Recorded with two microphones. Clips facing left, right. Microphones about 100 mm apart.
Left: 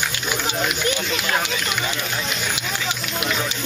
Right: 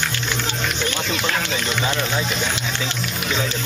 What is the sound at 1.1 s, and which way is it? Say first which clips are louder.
Speech: even; 35° right (ahead or behind).